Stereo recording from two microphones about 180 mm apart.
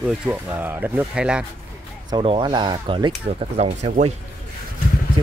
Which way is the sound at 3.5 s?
35° right (ahead or behind).